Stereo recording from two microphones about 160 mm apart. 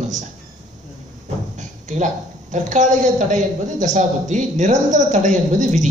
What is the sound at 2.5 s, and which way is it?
A woman's voice, 50° right (ahead or behind).